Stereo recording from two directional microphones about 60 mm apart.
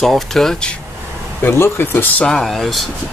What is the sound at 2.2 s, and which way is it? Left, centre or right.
Speech, centre.